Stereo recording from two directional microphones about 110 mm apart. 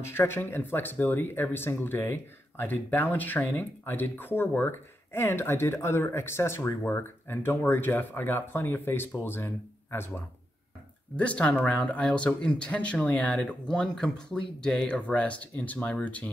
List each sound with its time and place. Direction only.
0.1 s speech: 20° left (ahead or behind)
11.1 s speech: 10° left (ahead or behind)